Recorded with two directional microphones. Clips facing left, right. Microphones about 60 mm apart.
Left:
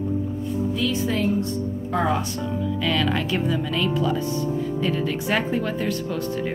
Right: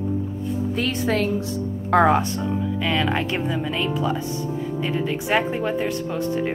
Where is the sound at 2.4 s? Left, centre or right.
Right.